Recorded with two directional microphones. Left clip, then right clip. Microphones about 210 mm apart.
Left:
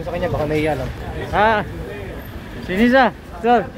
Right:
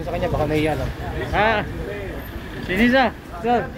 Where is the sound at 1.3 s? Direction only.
25° left (ahead or behind).